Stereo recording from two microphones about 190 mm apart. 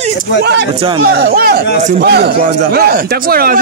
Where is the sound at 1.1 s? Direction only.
55° right (ahead or behind).